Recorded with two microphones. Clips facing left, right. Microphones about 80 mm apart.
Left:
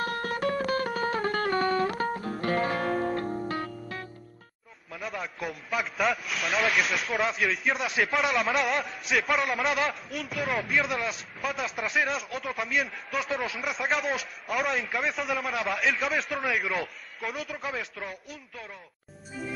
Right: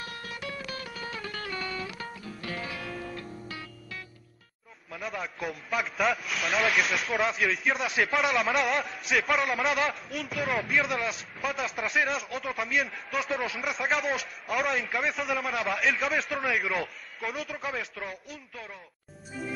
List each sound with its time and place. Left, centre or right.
0.0 s music: left
4.9 s a man's voice: centre
19.4 s music: centre